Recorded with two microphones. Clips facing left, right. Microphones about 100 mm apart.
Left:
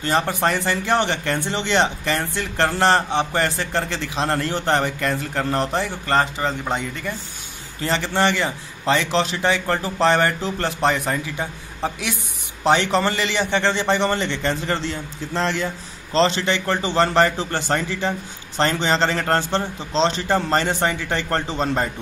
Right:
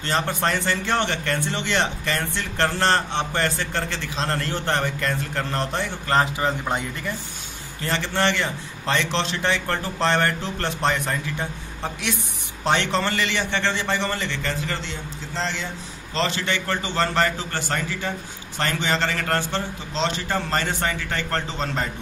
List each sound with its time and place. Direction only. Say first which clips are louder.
0.0 s a man's voice: left 3 dB; 10° left (ahead or behind)
6.0 s a man's voice: right 1 dB; 5° right (ahead or behind)
7.8 s a man's voice: left 3 dB; 15° left (ahead or behind); by 15.0 s 35° left (ahead or behind)
15.3 s speech: left 6 dB; 55° left (ahead or behind)
16.1 s a man's voice: left 6 dB; 30° left (ahead or behind)